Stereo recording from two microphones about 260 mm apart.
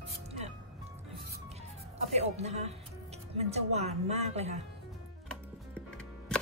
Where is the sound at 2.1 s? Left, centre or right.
Right.